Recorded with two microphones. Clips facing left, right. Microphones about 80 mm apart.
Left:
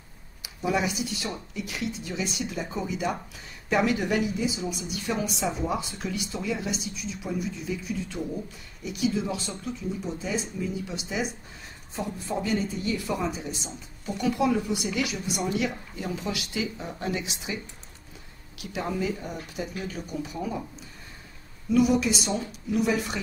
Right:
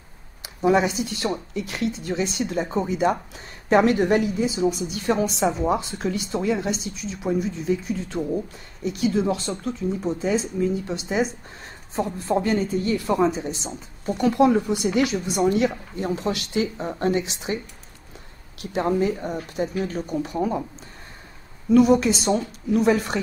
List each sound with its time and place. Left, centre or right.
0.4 s a woman's voice: right
10.0 s a woman's voice: right
18.6 s a woman's voice: right
21.7 s speech: right